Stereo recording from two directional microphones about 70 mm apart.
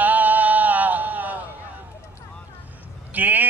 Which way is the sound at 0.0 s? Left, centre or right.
Right.